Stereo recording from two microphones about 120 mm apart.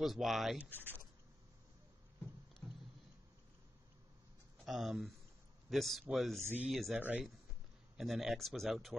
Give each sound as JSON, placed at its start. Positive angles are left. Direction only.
{"t": 0.0, "sound": "speech", "side_deg": 0}
{"t": 0.6, "sound": "speech", "side_deg": -15}
{"t": 2.6, "sound": "a sound", "side_deg": 20}
{"t": 4.6, "sound": "speech", "side_deg": -5}
{"t": 6.4, "sound": "speech", "side_deg": -15}
{"t": 6.7, "sound": "speech", "side_deg": 0}
{"t": 7.0, "sound": "speech", "side_deg": -10}